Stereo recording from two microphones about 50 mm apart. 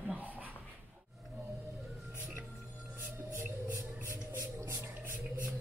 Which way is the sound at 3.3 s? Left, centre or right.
Right.